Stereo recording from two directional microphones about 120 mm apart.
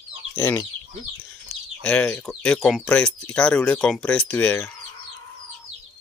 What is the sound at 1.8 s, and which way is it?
Speech, 10° left (ahead or behind).